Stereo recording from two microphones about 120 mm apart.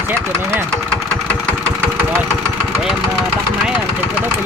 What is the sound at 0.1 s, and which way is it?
Speech, 15° right (ahead or behind).